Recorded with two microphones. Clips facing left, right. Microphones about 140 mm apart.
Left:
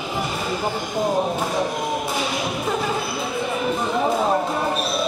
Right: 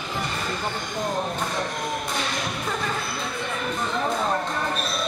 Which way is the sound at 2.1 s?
5° left (ahead or behind).